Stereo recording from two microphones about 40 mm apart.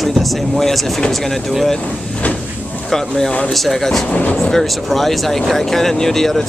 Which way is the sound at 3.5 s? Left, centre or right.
Centre.